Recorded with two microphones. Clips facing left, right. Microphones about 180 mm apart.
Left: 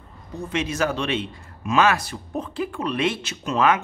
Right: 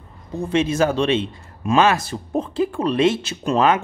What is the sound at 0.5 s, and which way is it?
A man's voice, 30° right (ahead or behind).